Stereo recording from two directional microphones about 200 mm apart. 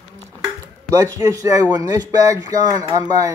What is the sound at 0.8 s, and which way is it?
Speech, 15° right (ahead or behind).